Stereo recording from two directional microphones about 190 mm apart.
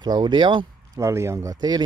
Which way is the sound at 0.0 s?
25° right (ahead or behind).